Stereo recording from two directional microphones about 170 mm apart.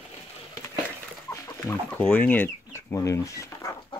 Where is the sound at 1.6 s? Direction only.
10° left (ahead or behind).